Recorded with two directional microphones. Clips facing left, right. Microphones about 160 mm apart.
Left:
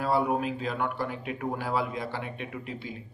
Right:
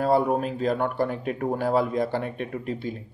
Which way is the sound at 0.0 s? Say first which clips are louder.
Right 5 dB; 45° right (ahead or behind).